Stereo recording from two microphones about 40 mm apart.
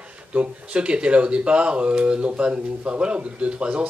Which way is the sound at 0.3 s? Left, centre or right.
Right.